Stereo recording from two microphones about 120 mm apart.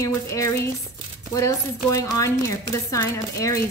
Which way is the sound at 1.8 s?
30° left (ahead or behind).